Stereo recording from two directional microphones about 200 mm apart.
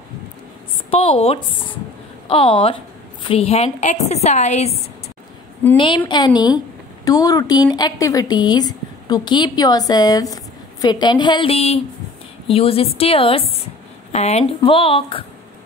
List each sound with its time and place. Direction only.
0.8 s a woman's voice: 30° left (ahead or behind)
5.8 s a woman's voice: 25° left (ahead or behind)